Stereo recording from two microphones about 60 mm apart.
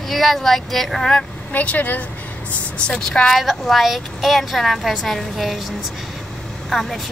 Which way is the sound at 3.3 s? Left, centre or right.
Centre.